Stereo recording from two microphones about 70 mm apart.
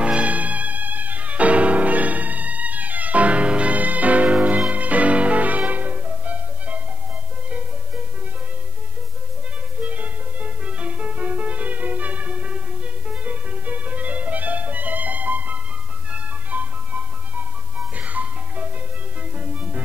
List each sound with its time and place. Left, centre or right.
0.0 s music: centre
9.8 s music: right